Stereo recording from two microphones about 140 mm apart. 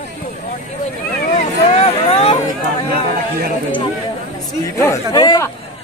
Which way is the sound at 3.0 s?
85° right.